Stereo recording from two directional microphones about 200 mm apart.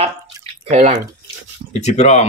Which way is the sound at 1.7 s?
35° left (ahead or behind).